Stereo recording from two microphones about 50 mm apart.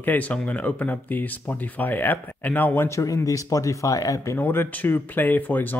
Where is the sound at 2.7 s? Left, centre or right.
Left.